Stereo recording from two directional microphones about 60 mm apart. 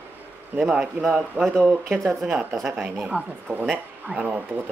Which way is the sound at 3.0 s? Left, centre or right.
Centre.